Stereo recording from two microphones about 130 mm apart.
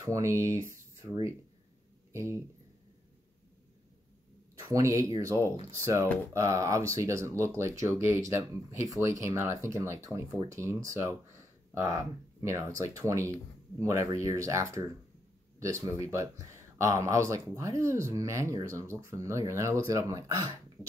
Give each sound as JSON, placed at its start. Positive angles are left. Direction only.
{"t": 0.0, "sound": "speech", "side_deg": -25}
{"t": 4.6, "sound": "speech", "side_deg": -25}